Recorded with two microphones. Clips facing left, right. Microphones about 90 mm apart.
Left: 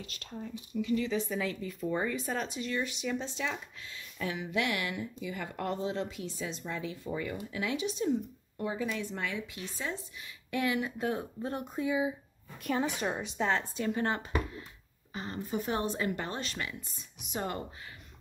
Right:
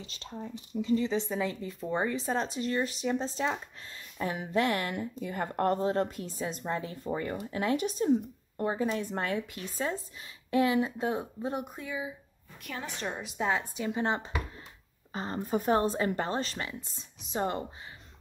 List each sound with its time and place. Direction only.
0.0 s speech: 30° right (ahead or behind)
10.5 s speech: 30° right (ahead or behind)
11.8 s a woman's voice: 15° left (ahead or behind)
13.2 s speech: 5° right (ahead or behind); by 14.3 s 20° right (ahead or behind)
15.1 s speech: 35° right (ahead or behind)